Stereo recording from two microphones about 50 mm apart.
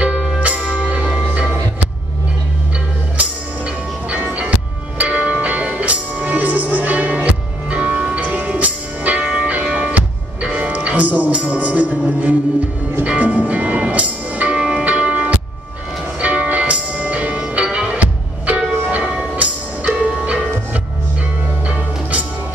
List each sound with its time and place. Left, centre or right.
0.0 s music: right
3.2 s music: right
14.6 s music: centre
14.9 s music: right
17.4 s music: centre
21.6 s music: right